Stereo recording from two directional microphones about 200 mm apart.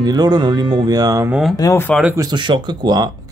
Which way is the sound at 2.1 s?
25° right (ahead or behind).